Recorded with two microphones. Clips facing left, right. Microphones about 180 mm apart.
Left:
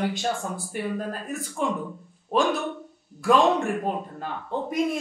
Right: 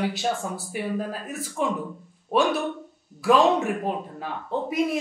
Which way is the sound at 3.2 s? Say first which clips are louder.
Right 1 dB; 5° right (ahead or behind).